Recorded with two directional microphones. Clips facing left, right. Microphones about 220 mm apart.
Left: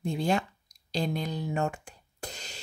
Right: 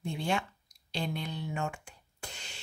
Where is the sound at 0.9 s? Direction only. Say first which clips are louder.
Left 5 dB; 40° left (ahead or behind).